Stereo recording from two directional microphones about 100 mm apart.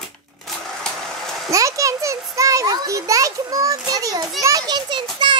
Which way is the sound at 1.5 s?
35° right (ahead or behind).